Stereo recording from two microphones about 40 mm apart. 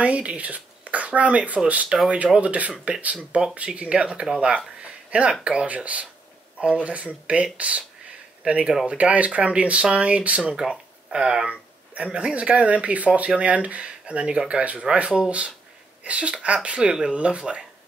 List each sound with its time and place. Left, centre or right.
0.0 s speech: right
1.9 s speech: centre
2.3 s speech: right
5.8 s speech: right
10.6 s speech: centre
11.4 s speech: right